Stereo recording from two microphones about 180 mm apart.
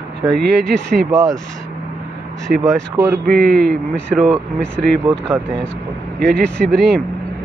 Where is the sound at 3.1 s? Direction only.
60° right (ahead or behind).